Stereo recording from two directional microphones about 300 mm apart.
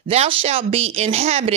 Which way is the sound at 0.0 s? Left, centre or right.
Centre.